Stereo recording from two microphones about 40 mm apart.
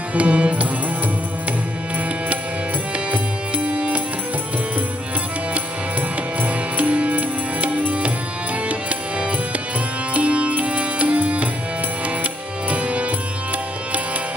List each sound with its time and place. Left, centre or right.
0.1 s music: right
3.1 s music: right
6.4 s music: right